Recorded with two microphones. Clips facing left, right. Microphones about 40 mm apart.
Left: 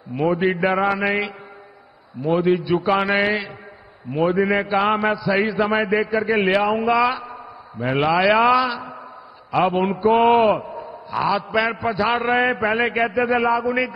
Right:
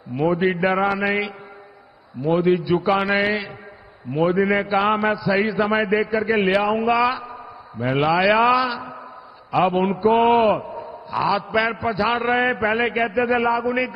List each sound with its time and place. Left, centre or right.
0.2 s mantra: centre
2.2 s mantra: centre
4.4 s mantra: centre
7.3 s a sound: centre
8.5 s mantra: centre
10.5 s a man's voice: left
10.8 s mantra: centre